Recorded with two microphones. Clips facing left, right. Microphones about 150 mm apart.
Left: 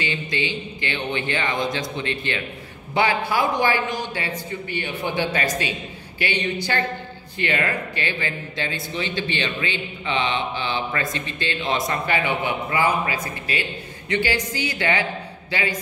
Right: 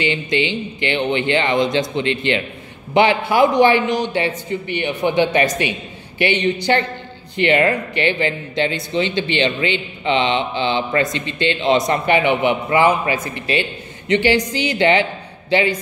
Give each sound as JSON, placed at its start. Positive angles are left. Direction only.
{"t": 0.5, "sound": "a man's voice", "side_deg": -25}